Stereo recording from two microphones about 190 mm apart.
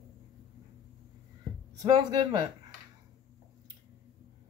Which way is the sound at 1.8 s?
20° right (ahead or behind).